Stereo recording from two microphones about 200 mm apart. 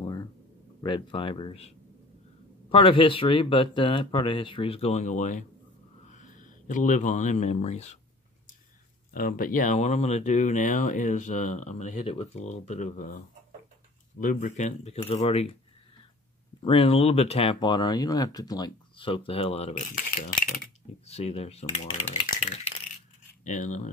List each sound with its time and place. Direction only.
0.0 s a sound: 15° left (ahead or behind)
0.8 s speech: 25° left (ahead or behind)
2.7 s speech: 25° left (ahead or behind)
9.1 s speech: 45° left (ahead or behind)
14.2 s speech: 40° left (ahead or behind)
16.6 s speech: 30° left (ahead or behind); by 20.6 s 45° left (ahead or behind)
21.1 s speech: 30° left (ahead or behind)